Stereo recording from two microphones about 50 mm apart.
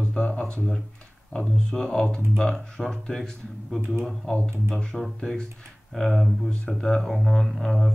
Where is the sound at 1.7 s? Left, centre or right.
Centre.